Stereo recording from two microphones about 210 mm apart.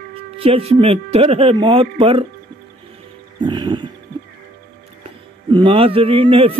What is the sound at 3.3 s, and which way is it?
Speech, 20° right (ahead or behind).